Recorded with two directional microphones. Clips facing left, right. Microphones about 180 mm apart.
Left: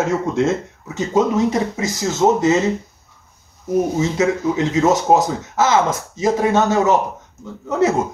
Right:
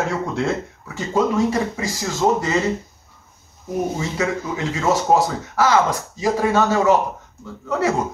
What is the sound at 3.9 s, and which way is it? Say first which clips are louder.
Speech: left 5 dB; 20° left (ahead or behind).